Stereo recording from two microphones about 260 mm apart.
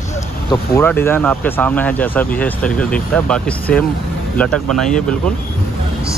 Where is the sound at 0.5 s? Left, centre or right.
Centre.